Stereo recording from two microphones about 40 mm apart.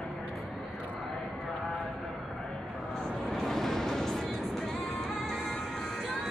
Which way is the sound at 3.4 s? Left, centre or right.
Centre.